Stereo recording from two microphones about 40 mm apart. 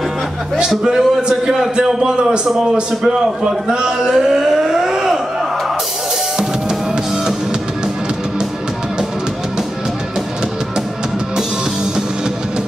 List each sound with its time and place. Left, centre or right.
0.7 s a man's voice: centre
1.9 s a man's voice: centre
2.4 s a man's voice: centre
3.1 s speech: centre